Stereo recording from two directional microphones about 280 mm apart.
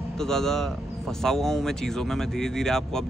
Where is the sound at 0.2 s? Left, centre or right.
Centre.